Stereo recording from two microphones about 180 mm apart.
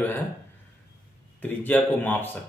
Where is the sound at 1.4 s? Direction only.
10° left (ahead or behind).